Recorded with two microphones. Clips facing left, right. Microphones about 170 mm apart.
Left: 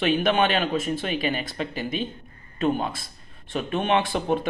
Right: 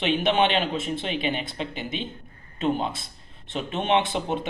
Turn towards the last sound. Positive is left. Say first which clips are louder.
# left 1 dB
turn(degrees=-25)  # may be behind; listen again after turning